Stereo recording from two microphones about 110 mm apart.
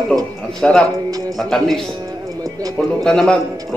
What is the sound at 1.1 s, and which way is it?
Speech, 35° right (ahead or behind).